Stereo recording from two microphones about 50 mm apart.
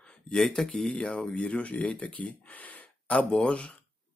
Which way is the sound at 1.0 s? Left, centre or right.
Centre.